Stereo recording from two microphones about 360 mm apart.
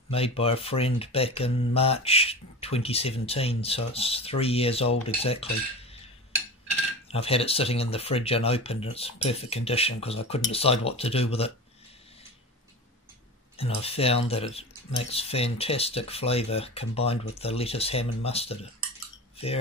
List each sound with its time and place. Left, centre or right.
0.1 s speech: centre
7.1 s speech: centre
13.6 s speech: centre